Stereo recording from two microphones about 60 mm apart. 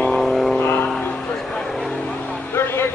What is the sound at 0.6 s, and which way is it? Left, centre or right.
Music, left.